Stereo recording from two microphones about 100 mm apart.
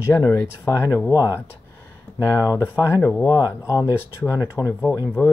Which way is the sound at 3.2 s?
40° left (ahead or behind).